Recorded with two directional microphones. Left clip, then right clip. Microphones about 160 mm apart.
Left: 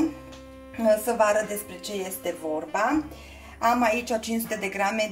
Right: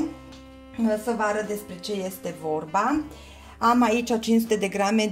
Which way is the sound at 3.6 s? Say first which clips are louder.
Right 2 dB; 80° right.